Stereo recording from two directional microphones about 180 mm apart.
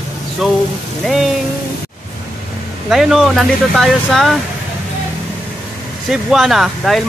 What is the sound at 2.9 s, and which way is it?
Speech, centre (ahead or behind).